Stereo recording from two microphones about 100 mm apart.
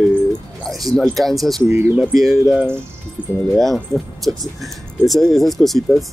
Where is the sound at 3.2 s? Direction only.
15° right (ahead or behind).